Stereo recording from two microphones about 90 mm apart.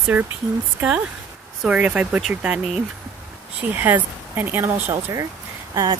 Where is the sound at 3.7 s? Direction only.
20° right (ahead or behind).